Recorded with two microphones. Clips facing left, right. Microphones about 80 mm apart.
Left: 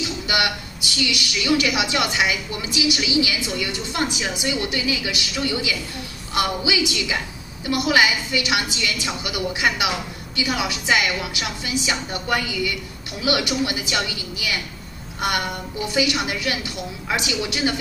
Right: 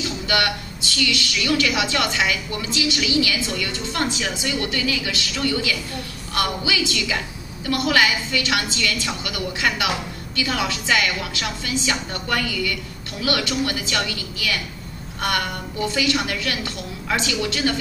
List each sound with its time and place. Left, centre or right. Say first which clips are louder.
0.3 s a woman's voice: right 1 dB; centre